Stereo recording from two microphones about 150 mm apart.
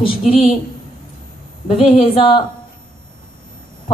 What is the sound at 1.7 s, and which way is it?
Speech, 40° left (ahead or behind).